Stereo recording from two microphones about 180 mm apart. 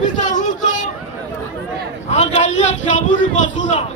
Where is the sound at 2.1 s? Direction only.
40° left (ahead or behind).